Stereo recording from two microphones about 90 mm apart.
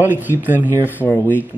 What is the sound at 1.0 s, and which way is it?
Speech, 15° left (ahead or behind).